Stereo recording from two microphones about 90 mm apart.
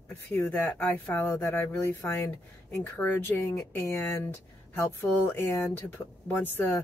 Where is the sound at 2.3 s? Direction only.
20° left (ahead or behind).